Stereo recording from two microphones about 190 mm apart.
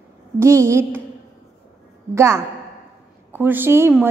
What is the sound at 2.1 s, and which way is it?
A woman's voice, 15° right (ahead or behind).